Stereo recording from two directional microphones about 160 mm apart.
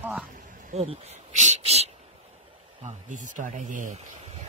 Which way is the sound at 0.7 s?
40° right (ahead or behind).